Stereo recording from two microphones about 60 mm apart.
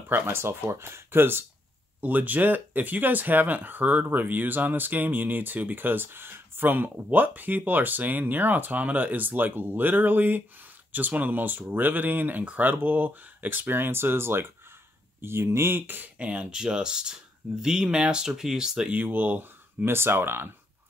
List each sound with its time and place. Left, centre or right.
0.1 s speech: right; by 18.9 s centre
18.9 s speech: right